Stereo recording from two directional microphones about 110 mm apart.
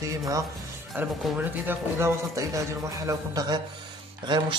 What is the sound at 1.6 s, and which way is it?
Speech, 25° right (ahead or behind).